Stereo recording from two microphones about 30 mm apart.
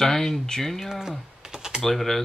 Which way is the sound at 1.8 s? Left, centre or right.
Centre.